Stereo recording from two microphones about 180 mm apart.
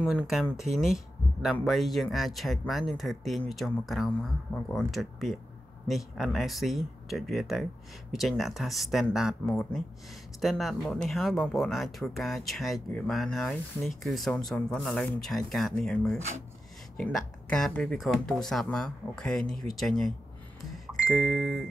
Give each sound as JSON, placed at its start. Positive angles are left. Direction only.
{"t": 0.0, "sound": "speech", "side_deg": -5}
{"t": 16.2, "sound": "speech", "side_deg": -40}
{"t": 16.9, "sound": "speech", "side_deg": 5}
{"t": 20.7, "sound": "music", "side_deg": 0}